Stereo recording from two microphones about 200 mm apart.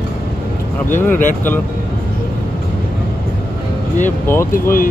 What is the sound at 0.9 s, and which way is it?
Speech, 10° left (ahead or behind).